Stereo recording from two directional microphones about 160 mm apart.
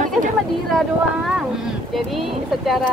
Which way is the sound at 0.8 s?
5° right (ahead or behind).